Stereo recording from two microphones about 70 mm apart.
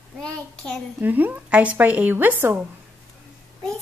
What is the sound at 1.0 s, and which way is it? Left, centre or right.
A woman's voice, right.